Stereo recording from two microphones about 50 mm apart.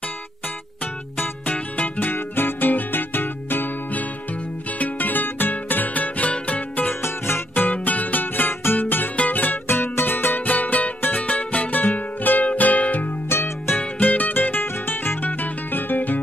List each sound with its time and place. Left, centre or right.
1.1 s music: left
6.9 s music: left
7.5 s music: left